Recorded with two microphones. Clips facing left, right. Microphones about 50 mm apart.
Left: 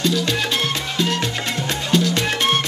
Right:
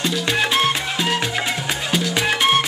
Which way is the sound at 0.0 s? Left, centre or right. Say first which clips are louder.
Even; centre.